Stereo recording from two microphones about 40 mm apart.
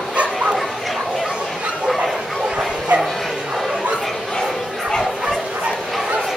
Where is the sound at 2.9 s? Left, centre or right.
Right.